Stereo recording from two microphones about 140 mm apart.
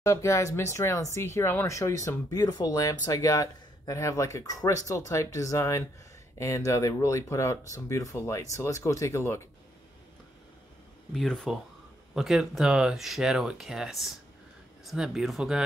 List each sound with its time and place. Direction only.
0.0 s speech: 20° left (ahead or behind)
11.1 s speech: 5° left (ahead or behind)